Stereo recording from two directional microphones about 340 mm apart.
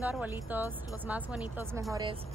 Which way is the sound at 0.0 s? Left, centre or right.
Centre.